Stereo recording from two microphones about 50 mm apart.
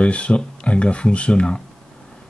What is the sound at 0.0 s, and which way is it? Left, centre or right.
Speech, left.